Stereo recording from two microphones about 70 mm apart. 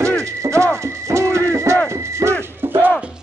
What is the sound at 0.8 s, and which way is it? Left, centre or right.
Music, right.